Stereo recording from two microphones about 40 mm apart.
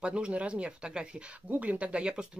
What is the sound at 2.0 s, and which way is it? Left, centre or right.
Speech, right.